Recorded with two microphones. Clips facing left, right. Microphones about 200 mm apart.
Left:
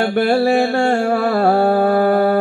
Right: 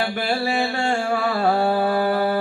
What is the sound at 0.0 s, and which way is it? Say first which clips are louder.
Mantra: left 9 dB; 50° left (ahead or behind).